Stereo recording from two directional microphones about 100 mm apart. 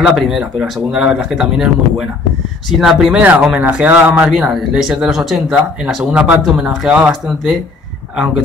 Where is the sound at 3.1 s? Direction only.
15° right (ahead or behind).